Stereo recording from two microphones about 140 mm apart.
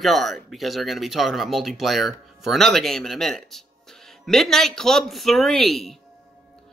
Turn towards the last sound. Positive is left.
turn(degrees=0)  # may be behind; listen again after turning